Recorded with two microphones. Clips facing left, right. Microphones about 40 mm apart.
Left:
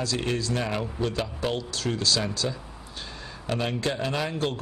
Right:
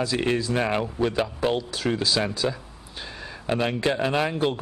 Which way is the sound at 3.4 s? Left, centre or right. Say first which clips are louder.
Right 4 dB; centre.